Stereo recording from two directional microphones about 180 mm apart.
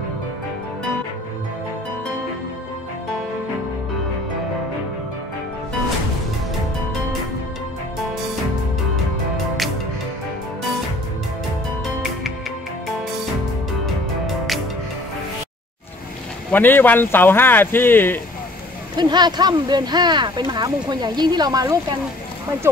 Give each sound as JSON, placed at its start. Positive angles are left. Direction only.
{"t": 14.2, "sound": "music", "side_deg": 0}
{"t": 16.5, "sound": "speech", "side_deg": 10}
{"t": 18.9, "sound": "speech", "side_deg": -25}